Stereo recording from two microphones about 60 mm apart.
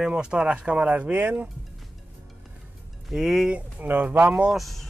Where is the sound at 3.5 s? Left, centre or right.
Right.